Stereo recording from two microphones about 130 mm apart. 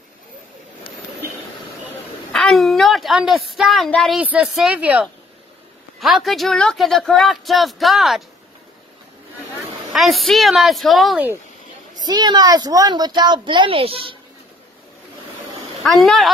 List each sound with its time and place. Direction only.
2.3 s a sound: centre (ahead or behind)
3.9 s speech: 5° left (ahead or behind)
4.2 s speech: 10° right (ahead or behind)
9.9 s speech: centre (ahead or behind)
12.0 s speech: 30° right (ahead or behind)
15.8 s speech: centre (ahead or behind)